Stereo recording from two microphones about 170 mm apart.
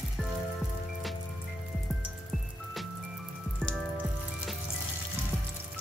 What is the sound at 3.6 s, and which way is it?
Music, centre (ahead or behind).